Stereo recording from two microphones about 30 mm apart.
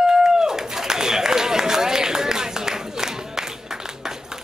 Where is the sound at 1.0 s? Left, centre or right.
Centre.